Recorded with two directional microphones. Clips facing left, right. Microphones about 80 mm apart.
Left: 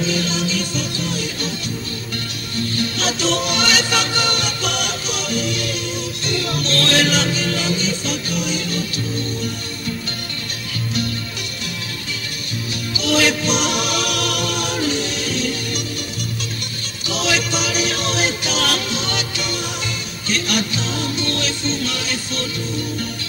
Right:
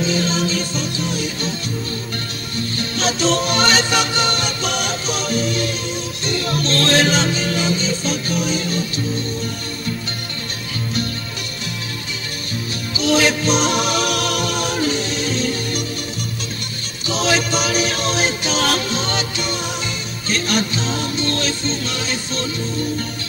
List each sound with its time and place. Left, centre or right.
0.1 s music: right
3.0 s music: right
3.9 s music: right
12.9 s music: right
17.1 s music: right